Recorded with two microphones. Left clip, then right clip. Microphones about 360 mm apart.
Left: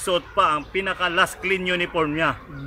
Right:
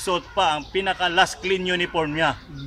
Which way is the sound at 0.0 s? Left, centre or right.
Right.